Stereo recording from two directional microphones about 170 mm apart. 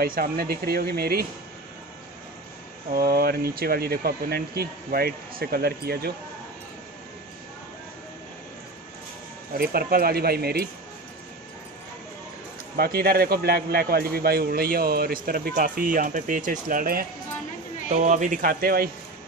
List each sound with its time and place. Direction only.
0.0 s speech: 60° right (ahead or behind)
2.9 s speech: 60° right (ahead or behind)
9.6 s speech: 60° right (ahead or behind)
12.7 s speech: 60° right (ahead or behind)
15.5 s speech: 50° right (ahead or behind)